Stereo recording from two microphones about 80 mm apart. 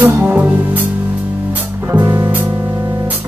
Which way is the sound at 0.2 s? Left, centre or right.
Centre.